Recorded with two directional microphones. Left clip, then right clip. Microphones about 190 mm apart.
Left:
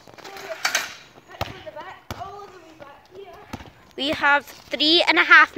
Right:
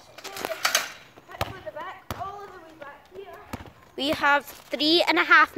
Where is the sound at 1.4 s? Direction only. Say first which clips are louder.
Even; centre (ahead or behind).